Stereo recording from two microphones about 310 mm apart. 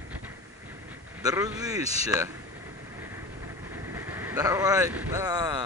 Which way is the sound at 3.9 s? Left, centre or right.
Centre.